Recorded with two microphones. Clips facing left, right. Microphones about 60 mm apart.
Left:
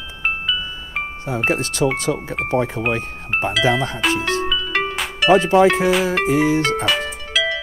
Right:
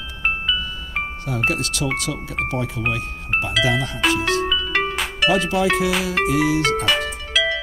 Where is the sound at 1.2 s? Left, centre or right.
Left.